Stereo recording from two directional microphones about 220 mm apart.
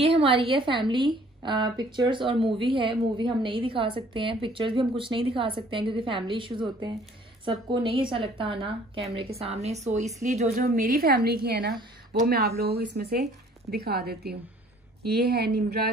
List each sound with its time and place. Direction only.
0.0 s a woman's voice: 25° right (ahead or behind); by 15.9 s 45° right (ahead or behind)